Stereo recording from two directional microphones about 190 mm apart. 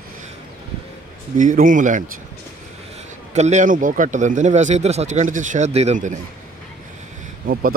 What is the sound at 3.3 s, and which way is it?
Speech, 35° right (ahead or behind).